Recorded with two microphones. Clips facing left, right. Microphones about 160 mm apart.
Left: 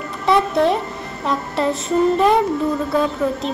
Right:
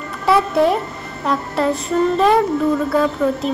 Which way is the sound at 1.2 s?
Centre (ahead or behind).